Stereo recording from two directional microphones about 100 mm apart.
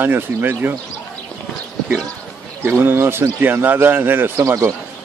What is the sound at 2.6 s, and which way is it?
Speech, 20° right (ahead or behind).